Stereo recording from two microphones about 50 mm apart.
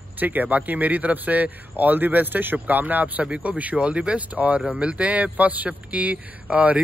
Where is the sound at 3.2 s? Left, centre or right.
Right.